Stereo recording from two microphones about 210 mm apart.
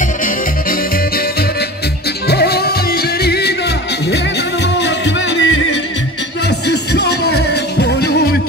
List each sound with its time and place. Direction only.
2.2 s music: 50° left (ahead or behind)
4.7 s music: 55° left (ahead or behind)